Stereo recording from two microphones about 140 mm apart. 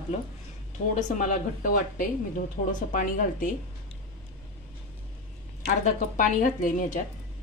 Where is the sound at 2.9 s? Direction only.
75° left (ahead or behind).